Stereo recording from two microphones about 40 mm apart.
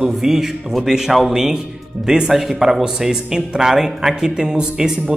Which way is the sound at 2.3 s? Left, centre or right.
Centre.